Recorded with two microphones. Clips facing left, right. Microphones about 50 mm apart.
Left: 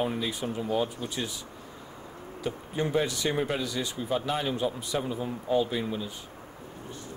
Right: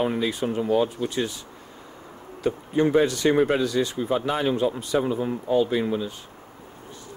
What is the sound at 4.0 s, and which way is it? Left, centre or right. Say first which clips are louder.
Speech: right 5 dB; right.